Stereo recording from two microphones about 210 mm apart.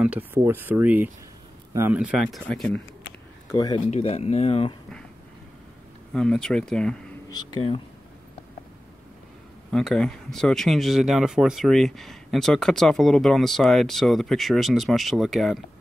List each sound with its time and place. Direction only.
0.0 s speech: 10° right (ahead or behind)
3.5 s speech: 20° left (ahead or behind)
6.1 s speech: 5° left (ahead or behind)
7.2 s speech: 20° left (ahead or behind)
9.7 s speech: 5° left (ahead or behind)